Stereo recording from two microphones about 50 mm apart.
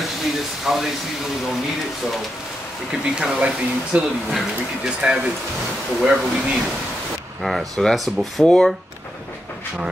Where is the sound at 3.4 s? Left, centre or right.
Right.